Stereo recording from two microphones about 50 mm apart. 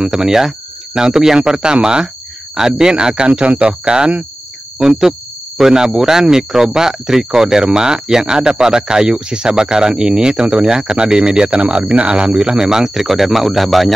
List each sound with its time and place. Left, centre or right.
0.0 s speech: centre